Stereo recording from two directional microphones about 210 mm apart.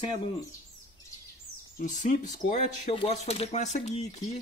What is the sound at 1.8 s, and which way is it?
Speech, 35° left (ahead or behind).